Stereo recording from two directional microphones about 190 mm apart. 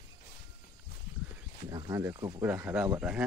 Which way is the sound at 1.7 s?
15° right (ahead or behind).